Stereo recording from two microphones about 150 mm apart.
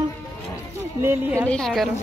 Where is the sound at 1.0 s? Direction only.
15° right (ahead or behind).